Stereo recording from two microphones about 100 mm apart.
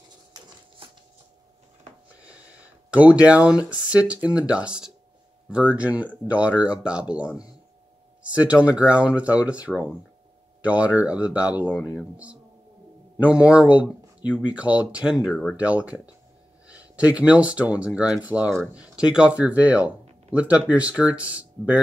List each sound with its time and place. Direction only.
2.9 s speech: 10° right (ahead or behind)
13.2 s speech: 10° right (ahead or behind)